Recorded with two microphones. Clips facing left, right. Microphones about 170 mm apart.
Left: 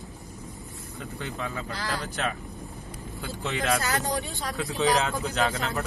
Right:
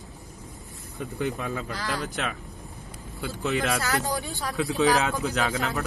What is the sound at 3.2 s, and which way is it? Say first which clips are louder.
Speech: right 4 dB; centre (ahead or behind).